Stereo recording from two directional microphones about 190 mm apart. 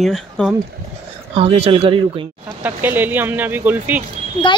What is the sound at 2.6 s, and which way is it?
Speech, 10° right (ahead or behind).